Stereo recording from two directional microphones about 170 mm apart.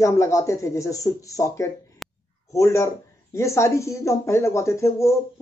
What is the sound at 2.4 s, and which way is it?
Speech, 20° left (ahead or behind).